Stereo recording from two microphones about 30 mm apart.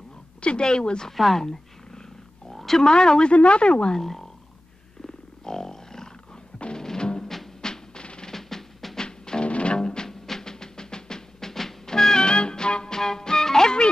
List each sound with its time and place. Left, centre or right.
0.4 s speech: left
1.1 s speech: centre
1.4 s purr: centre
2.5 s oink: centre
2.8 s speech: left
3.3 s speech: left
4.0 s speech: centre
5.0 s wild animals: centre
7.0 s music: left
8.3 s music: centre
9.0 s music: left
9.4 s music: left
9.8 s music: left